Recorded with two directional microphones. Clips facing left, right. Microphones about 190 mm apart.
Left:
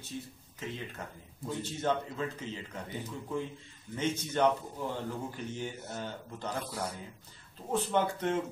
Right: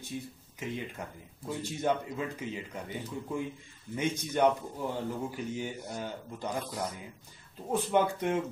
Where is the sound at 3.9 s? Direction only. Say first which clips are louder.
Right 1 dB; 10° right (ahead or behind).